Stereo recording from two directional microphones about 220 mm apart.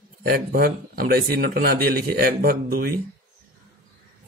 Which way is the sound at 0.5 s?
40° right (ahead or behind).